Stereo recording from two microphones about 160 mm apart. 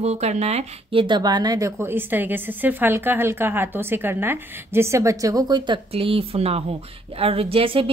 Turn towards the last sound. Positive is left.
turn(degrees=-35)  # may be behind; listen again after turning